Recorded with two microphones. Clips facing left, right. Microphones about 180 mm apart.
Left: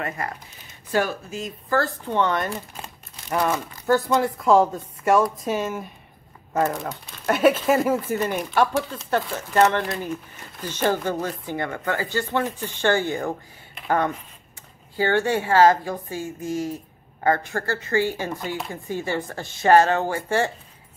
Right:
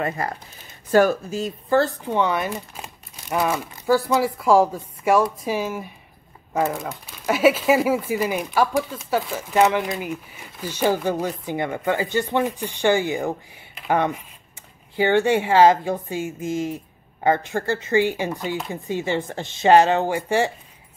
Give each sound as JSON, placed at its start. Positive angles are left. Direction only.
{"t": 0.2, "sound": "speech", "side_deg": -35}
{"t": 1.7, "sound": "speech", "side_deg": -20}
{"t": 2.1, "sound": "speech", "side_deg": -10}